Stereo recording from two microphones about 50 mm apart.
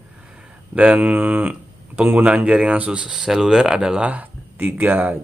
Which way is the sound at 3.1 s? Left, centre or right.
Centre.